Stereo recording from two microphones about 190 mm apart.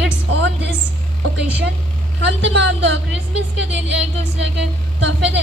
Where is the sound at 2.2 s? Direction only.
70° right (ahead or behind).